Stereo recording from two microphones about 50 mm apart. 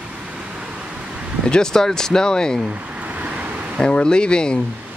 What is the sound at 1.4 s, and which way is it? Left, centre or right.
Speech, centre.